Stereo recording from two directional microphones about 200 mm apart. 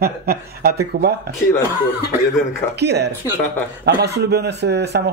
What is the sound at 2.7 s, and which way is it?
Speech, 55° right (ahead or behind).